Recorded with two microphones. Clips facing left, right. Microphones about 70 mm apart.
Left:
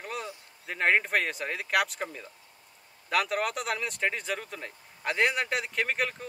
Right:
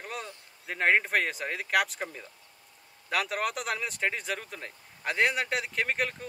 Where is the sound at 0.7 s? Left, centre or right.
Centre.